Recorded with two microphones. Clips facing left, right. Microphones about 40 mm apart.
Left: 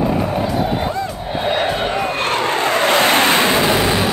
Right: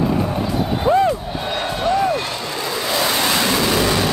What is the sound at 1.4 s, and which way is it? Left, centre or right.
Vehicle, left.